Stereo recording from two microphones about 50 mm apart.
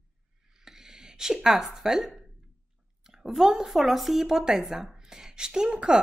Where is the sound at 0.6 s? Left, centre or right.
Centre.